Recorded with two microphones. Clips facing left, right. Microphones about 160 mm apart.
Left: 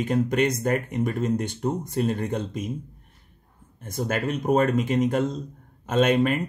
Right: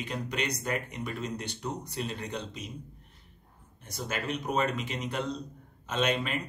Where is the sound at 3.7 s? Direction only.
50° left (ahead or behind).